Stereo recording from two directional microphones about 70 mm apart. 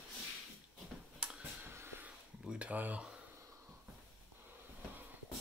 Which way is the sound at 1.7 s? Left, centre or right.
Right.